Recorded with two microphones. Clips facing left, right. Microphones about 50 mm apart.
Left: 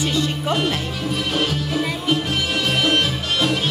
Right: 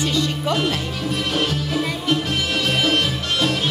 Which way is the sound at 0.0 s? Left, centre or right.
Centre.